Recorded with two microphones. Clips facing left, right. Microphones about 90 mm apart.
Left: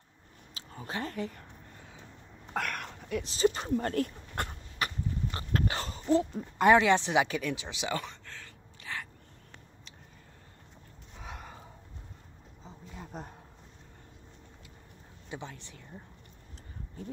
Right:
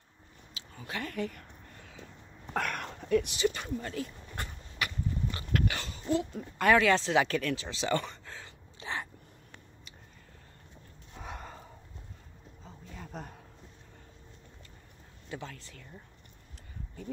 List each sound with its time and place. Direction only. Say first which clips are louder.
0.6 s speech: left 2 dB; 35° left (ahead or behind)
2.5 s a sound: right 1 dB; centre (ahead or behind)
3.3 s speech: left 3 dB; 35° left (ahead or behind)
3.7 s speech: left 6 dB; 55° left (ahead or behind)
4.7 s dog: left 1 dB; 35° left (ahead or behind)
6.6 s speech: left 2 dB; 20° left (ahead or behind); by 8.2 s 5° left (ahead or behind)
8.3 s a sound: right 1 dB; 20° right (ahead or behind)
11.1 s gasp: right 2 dB; centre (ahead or behind)
12.6 s a sound: left 1 dB; 15° left (ahead or behind)
15.2 s speech: even; 20° left (ahead or behind)